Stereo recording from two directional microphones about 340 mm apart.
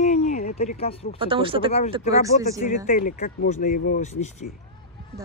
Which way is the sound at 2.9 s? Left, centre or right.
Left.